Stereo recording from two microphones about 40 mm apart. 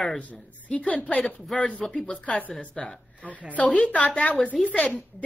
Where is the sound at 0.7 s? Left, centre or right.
Left.